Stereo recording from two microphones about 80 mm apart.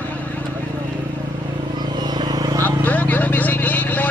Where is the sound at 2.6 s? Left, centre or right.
Left.